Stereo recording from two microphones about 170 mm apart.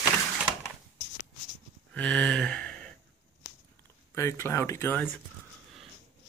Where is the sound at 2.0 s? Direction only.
5° left (ahead or behind).